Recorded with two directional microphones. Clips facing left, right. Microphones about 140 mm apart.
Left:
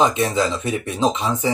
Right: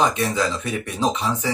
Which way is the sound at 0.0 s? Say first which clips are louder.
Left 3 dB; 25° left (ahead or behind).